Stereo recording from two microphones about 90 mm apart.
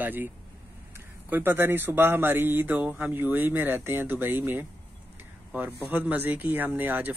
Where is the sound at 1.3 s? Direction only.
25° right (ahead or behind).